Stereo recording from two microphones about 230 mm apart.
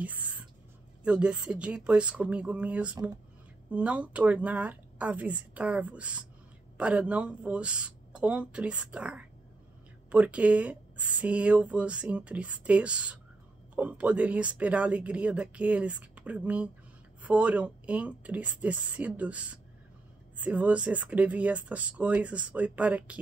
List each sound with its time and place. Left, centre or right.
0.0 s whispering: centre
1.0 s speech: centre